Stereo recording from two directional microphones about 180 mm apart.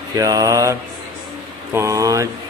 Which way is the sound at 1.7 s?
15° right (ahead or behind).